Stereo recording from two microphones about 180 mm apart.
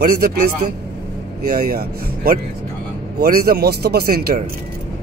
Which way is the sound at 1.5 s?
55° right (ahead or behind).